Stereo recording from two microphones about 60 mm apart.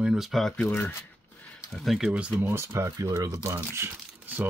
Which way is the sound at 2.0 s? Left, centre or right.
Right.